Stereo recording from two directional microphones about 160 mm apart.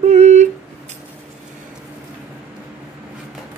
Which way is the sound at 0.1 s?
45° right (ahead or behind).